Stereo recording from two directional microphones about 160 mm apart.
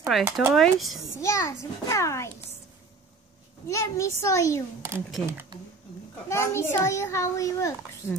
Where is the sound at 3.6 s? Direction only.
20° left (ahead or behind).